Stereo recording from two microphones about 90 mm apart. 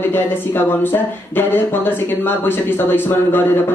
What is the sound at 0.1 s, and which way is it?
Speech, 25° left (ahead or behind).